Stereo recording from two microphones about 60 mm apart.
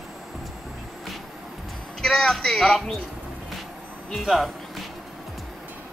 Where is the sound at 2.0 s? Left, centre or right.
Centre.